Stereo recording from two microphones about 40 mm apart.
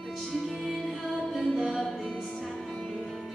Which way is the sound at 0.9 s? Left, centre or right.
Centre.